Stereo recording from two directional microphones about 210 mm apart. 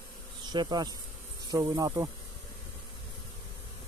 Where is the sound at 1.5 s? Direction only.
15° right (ahead or behind).